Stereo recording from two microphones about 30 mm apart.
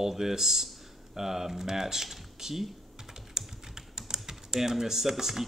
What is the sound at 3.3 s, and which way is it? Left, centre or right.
Typing, centre.